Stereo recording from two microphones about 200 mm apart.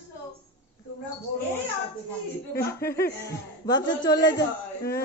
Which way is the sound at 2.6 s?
50° left (ahead or behind).